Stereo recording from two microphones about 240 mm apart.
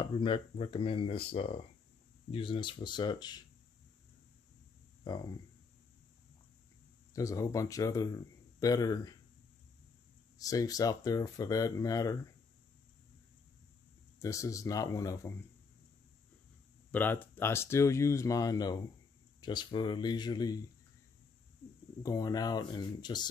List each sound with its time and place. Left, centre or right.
0.0 s speech: left
5.0 s speech: centre
7.2 s speech: centre
10.3 s speech: centre
14.2 s speech: centre
16.9 s speech: centre
22.0 s speech: centre